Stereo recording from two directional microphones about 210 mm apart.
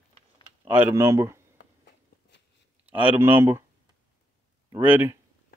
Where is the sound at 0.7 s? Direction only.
10° right (ahead or behind).